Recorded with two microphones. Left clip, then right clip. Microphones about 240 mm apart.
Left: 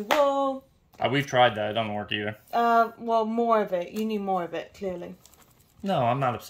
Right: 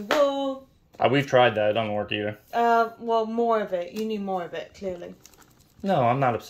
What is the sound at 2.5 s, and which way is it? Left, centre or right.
Speech, left.